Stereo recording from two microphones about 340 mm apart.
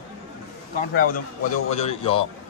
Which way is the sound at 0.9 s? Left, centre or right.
Left.